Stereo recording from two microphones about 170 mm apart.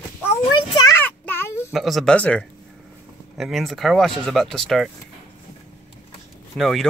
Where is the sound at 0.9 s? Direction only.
10° left (ahead or behind).